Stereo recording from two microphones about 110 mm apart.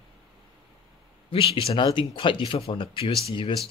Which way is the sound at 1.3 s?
55° left (ahead or behind).